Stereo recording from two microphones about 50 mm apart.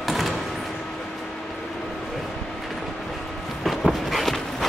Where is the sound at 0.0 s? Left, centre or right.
Centre.